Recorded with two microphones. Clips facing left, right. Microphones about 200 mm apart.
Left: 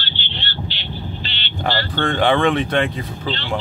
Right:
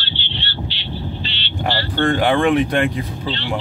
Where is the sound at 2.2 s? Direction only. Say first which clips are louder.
Left 1 dB; 10° right (ahead or behind).